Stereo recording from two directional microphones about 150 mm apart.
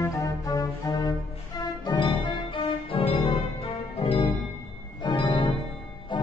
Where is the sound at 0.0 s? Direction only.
25° left (ahead or behind).